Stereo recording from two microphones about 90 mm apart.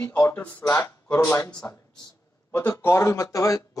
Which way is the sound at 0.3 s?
15° left (ahead or behind).